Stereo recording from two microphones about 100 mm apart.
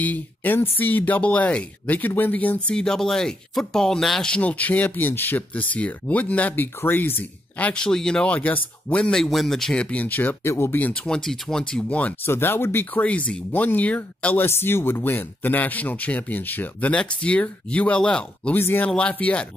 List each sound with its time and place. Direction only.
0.0 s speech: 15° left (ahead or behind)
10.9 s speech: 10° left (ahead or behind)
12.3 s speech: 25° left (ahead or behind)